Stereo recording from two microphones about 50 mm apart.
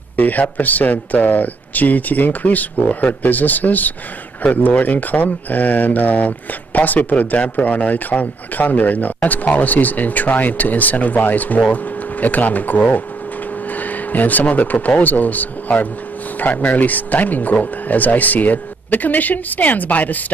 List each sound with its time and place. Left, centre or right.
0.1 s speech: left